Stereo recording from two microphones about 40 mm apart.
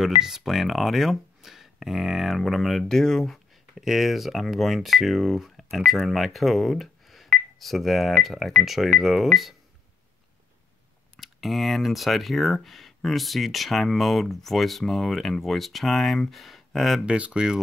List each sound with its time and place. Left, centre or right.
0.0 s speech: centre
2.9 s speech: centre
3.7 s speech: centre
11.1 s speech: centre
17.0 s speech: right